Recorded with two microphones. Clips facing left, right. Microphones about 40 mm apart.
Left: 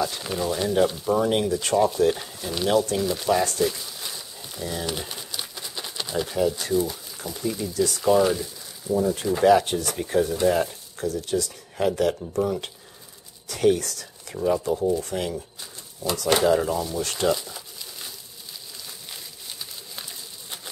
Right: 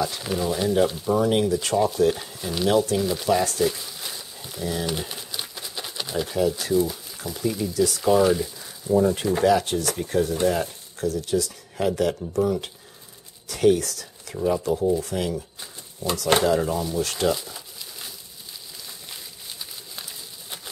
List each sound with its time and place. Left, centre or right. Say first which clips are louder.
0.0 s speech: right 1 dB; centre
8.9 s speech: right 3 dB; right
9.4 s speech: left 3 dB; centre
16.0 s speech: right 1 dB; right
16.4 s speech: left 1 dB; centre
19.6 s a sound: even; centre